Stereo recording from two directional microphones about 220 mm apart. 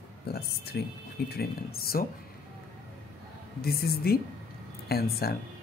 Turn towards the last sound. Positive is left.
turn(degrees=45)  # may be behind; listen again after turning